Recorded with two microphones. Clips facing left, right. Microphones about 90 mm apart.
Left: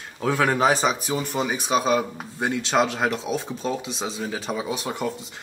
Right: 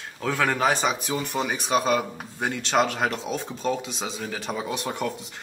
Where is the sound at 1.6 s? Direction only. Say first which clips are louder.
Left 1 dB; 15° left (ahead or behind).